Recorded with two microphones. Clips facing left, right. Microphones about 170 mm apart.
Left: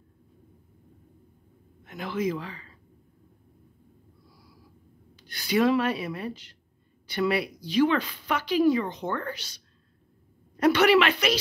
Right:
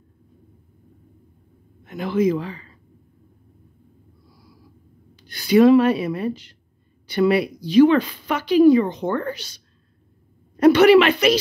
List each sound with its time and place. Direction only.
1.9 s speech: 25° right (ahead or behind)
5.6 s speech: 25° right (ahead or behind)
8.6 s speech: 30° right (ahead or behind)
10.6 s speech: 25° right (ahead or behind)